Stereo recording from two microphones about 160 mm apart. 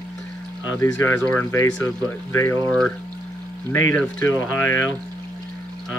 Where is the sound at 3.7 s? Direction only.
15° left (ahead or behind).